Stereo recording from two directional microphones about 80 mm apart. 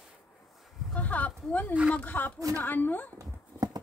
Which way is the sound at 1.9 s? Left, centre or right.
Left.